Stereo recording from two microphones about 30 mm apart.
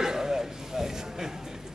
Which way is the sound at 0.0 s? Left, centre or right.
Centre.